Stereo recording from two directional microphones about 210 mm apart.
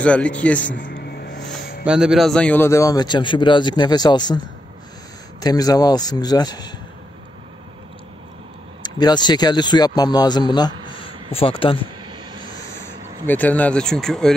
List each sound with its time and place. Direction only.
0.0 s speech: 5° left (ahead or behind)
0.7 s a sound: 45° left (ahead or behind)
1.9 s a man's voice: 5° right (ahead or behind); by 4.4 s 20° left (ahead or behind)
5.4 s a man's voice: 20° left (ahead or behind)
8.8 s a man's voice: 20° left (ahead or behind)
13.3 s speech: 10° left (ahead or behind)